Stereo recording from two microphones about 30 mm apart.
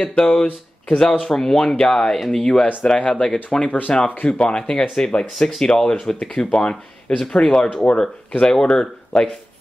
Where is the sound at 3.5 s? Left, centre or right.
Left.